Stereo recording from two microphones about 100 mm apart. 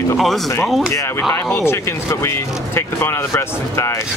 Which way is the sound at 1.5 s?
25° left (ahead or behind).